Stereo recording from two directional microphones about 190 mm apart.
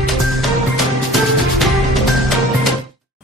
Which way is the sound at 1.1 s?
Centre (ahead or behind).